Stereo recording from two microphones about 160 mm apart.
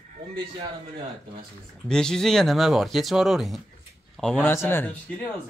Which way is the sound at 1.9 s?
5° left (ahead or behind).